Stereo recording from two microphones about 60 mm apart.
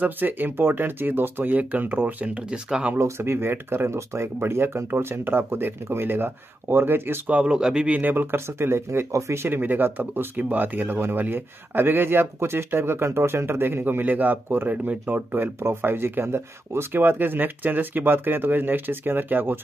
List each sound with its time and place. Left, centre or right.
0.0 s speech: right
3.0 s speech: right
7.2 s speech: centre
7.9 s speech: right
9.5 s speech: right